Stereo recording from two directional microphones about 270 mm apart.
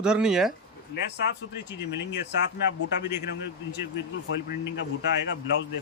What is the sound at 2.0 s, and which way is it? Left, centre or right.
Speech, left.